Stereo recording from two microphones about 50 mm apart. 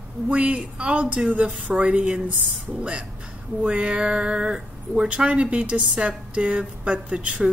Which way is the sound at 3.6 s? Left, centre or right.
Right.